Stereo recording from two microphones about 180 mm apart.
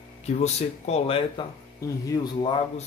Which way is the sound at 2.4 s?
30° left (ahead or behind).